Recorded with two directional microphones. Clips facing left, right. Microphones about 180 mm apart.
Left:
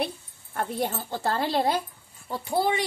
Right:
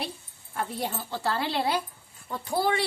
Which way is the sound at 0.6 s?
45° left (ahead or behind).